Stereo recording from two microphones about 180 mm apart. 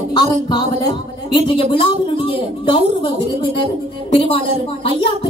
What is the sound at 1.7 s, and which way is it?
Speech, 30° left (ahead or behind).